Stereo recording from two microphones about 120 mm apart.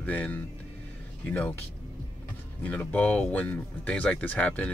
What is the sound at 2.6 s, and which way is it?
Speech, 15° left (ahead or behind).